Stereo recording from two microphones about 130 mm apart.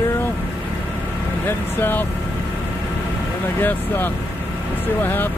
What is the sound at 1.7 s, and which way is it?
Speech, 15° left (ahead or behind).